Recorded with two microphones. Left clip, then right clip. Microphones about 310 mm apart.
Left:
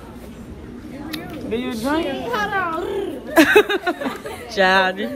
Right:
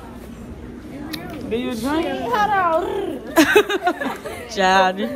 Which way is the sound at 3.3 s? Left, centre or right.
Centre.